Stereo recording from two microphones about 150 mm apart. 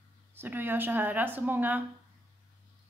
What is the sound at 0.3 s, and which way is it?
A woman's voice, 15° right (ahead or behind).